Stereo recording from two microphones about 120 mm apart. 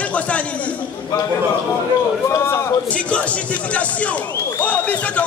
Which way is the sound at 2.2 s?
25° left (ahead or behind).